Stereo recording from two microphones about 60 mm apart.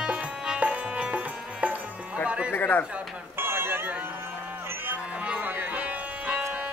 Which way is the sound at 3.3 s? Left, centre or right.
Right.